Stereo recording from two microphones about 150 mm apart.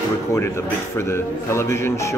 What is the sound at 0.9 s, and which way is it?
A man's voice, 15° left (ahead or behind).